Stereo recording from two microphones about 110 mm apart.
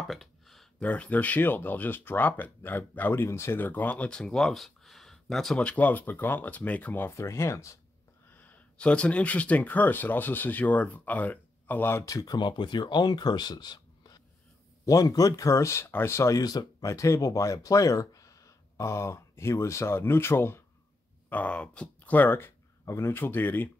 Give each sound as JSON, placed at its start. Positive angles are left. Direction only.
{"t": 0.0, "sound": "a sound", "side_deg": 0}
{"t": 0.8, "sound": "speech", "side_deg": 10}
{"t": 8.4, "sound": "speech", "side_deg": 10}
{"t": 12.0, "sound": "speech", "side_deg": 35}